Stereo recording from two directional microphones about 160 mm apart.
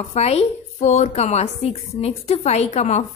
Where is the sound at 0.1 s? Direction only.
40° left (ahead or behind).